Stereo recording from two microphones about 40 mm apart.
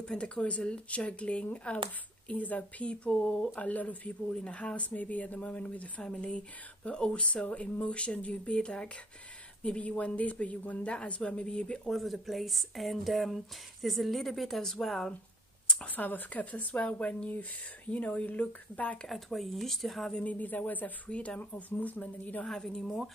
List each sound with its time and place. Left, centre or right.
0.0 s speech: left
2.2 s speech: left
2.8 s speech: left
4.5 s speech: left
10.9 s speech: left
11.9 s speech: centre
15.8 s speech: left
19.0 s speech: centre
20.2 s speech: left
21.1 s speech: left
21.4 s speech: left
22.5 s speech: centre